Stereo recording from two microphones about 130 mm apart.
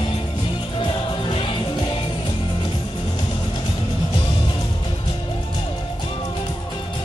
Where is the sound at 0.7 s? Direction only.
45° left (ahead or behind).